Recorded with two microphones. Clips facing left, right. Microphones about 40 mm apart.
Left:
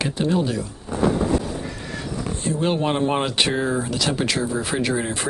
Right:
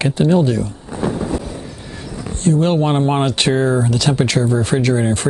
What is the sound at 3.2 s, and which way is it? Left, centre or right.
Speech, centre.